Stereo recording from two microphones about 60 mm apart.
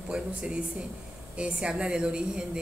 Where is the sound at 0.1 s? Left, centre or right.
Centre.